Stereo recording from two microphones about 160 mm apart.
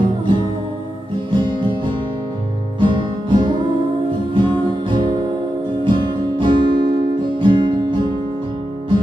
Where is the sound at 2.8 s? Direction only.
30° right (ahead or behind).